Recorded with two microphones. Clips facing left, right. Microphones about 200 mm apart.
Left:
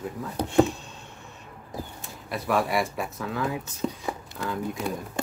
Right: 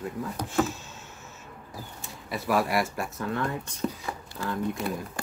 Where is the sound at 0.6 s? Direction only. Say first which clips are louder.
Left 3 dB; 5° right (ahead or behind).